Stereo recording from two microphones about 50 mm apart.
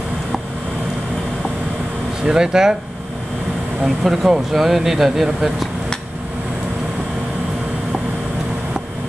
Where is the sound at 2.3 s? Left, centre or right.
Centre.